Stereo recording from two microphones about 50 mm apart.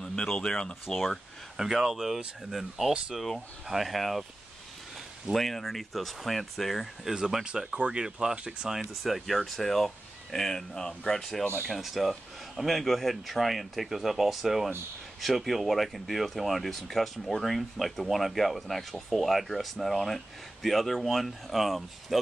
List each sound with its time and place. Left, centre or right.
0.0 s speech: centre
0.8 s speech: centre
5.3 s speech: centre
7.4 s speech: centre